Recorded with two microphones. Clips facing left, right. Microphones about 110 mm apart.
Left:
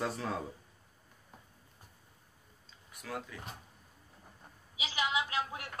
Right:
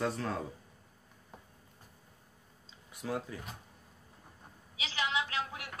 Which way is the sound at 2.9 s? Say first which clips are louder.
Right 5 dB; 30° right (ahead or behind).